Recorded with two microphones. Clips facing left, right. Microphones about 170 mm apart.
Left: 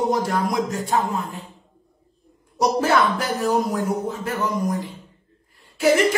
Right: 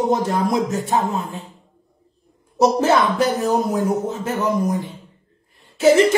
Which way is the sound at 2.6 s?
25° right (ahead or behind).